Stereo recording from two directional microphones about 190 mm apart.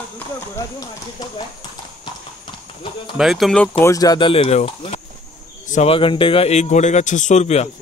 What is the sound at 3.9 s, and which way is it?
A man's voice, 20° left (ahead or behind).